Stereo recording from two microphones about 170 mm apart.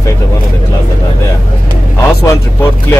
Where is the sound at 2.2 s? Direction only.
15° left (ahead or behind).